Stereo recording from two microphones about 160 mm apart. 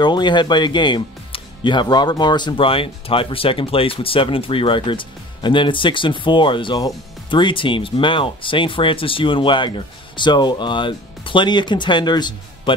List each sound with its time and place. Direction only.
0.0 s speech: 30° left (ahead or behind)